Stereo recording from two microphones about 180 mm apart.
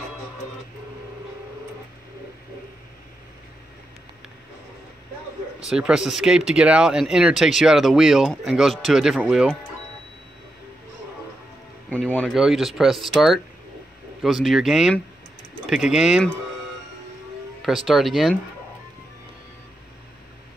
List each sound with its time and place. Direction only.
5.7 s speech: 5° right (ahead or behind)
11.9 s a sound: 10° left (ahead or behind)
12.4 s speech: centre (ahead or behind)
17.6 s speech: centre (ahead or behind)